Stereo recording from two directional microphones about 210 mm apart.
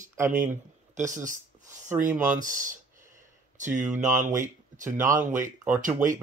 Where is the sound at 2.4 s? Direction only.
40° right (ahead or behind).